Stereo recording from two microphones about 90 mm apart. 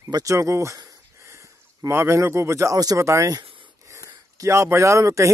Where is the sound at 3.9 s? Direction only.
35° right (ahead or behind).